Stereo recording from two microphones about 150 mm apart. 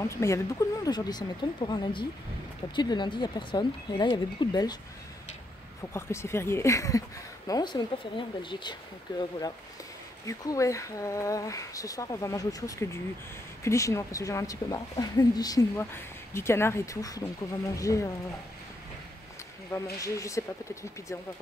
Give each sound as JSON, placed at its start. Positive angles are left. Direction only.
{"t": 0.0, "sound": "speech", "side_deg": 20}
{"t": 5.9, "sound": "speech", "side_deg": 15}
{"t": 19.7, "sound": "speech", "side_deg": 20}